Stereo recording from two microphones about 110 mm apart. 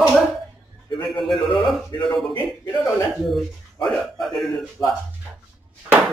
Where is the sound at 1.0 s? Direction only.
Centre (ahead or behind).